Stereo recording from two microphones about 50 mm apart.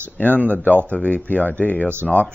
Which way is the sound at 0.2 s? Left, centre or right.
Left.